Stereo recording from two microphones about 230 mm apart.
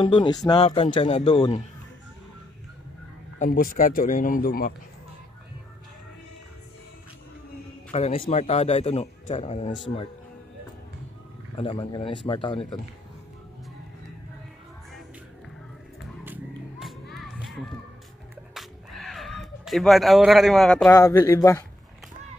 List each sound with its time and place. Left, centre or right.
0.0 s a man's voice: centre
3.3 s speech: left
7.9 s a man's voice: left
11.5 s a man's voice: left
17.1 s music: centre
18.5 s a sound: centre
20.9 s speech: centre